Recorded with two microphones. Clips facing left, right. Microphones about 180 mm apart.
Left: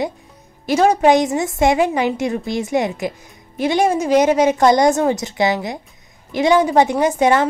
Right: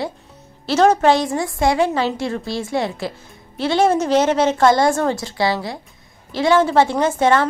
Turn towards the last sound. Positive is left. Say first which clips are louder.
# left 1 dB
turn(degrees=15)  # may be behind; listen again after turning